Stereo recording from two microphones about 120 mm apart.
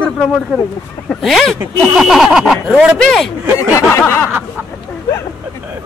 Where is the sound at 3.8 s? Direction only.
20° left (ahead or behind).